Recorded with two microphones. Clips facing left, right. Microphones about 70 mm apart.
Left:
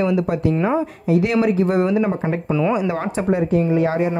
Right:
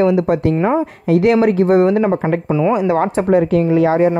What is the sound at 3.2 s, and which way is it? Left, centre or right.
Speech, right.